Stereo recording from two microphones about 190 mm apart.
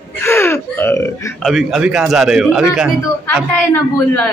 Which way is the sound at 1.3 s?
Centre (ahead or behind).